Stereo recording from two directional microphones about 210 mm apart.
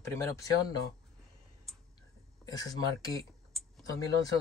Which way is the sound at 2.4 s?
15° left (ahead or behind).